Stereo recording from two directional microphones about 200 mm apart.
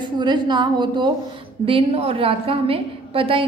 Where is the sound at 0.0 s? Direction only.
20° right (ahead or behind).